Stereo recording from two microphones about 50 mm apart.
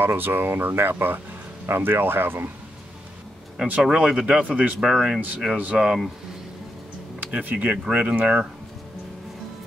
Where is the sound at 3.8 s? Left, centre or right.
Centre.